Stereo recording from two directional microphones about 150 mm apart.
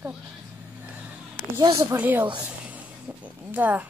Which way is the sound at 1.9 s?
10° right (ahead or behind).